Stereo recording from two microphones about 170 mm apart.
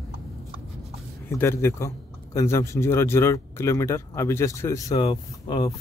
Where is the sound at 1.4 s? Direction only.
15° left (ahead or behind).